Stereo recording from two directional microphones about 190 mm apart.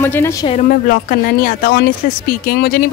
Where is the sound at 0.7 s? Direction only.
50° left (ahead or behind).